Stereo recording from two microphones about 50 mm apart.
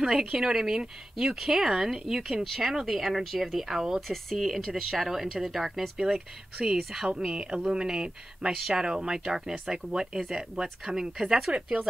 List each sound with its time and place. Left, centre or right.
0.0 s speech: centre